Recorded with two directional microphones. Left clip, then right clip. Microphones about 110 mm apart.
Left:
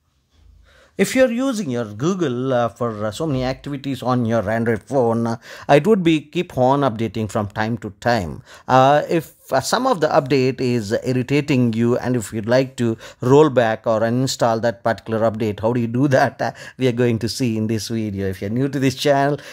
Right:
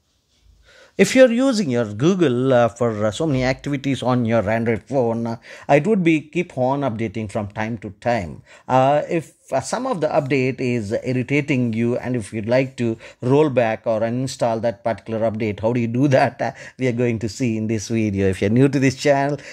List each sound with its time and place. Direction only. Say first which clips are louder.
0.9 s speech: right 3 dB; 20° right (ahead or behind); by 4.6 s centre (ahead or behind)
4.6 s speech: left 2 dB; 20° left (ahead or behind)
11.6 s speech: left 3 dB; 30° left (ahead or behind)
16.2 s speech: left 1 dB; 10° left (ahead or behind)
16.8 s speech: left 2 dB; 20° left (ahead or behind)
17.9 s speech: right 4 dB; 15° right (ahead or behind)
18.3 s speech: right 8 dB; 30° right (ahead or behind)
18.8 s speech: even; 5° left (ahead or behind)